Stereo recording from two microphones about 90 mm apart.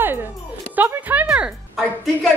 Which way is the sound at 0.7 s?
20° right (ahead or behind).